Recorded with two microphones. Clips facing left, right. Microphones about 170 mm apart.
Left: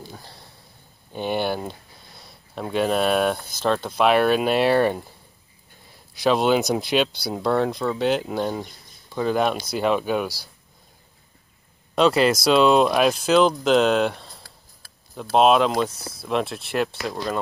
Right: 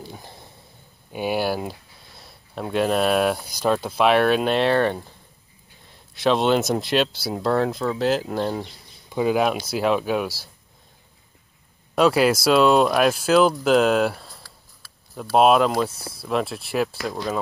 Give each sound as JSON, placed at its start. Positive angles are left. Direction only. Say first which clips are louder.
{"t": 0.1, "sound": "a sound", "louder": "right 2 dB", "side_deg": -15}
{"t": 1.1, "sound": "speech", "louder": "right 1 dB", "side_deg": -5}
{"t": 6.1, "sound": "speech", "louder": "even", "side_deg": 0}
{"t": 11.9, "sound": "speech", "louder": "even", "side_deg": -5}
{"t": 15.3, "sound": "speech", "louder": "even", "side_deg": -5}
{"t": 15.9, "sound": "speech", "louder": "even", "side_deg": -30}
{"t": 16.3, "sound": "speech", "louder": "even", "side_deg": 0}